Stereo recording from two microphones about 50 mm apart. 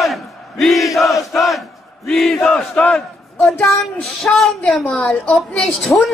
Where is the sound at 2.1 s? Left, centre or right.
Centre.